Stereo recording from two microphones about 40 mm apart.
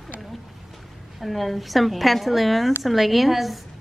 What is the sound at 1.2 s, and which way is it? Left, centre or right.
Speech, centre.